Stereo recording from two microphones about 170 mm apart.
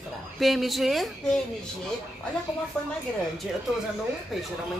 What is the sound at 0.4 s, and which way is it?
A woman's voice, centre (ahead or behind).